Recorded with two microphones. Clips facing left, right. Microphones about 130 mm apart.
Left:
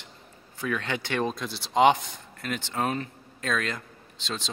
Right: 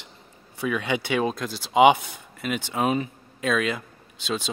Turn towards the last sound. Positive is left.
turn(degrees=-10)  # may be behind; listen again after turning